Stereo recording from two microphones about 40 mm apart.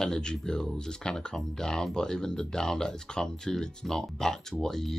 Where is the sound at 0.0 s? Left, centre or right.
Centre.